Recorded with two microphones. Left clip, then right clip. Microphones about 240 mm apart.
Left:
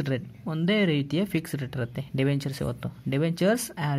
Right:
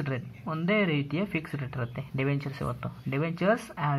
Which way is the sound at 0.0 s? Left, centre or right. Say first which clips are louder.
Left 4 dB; left.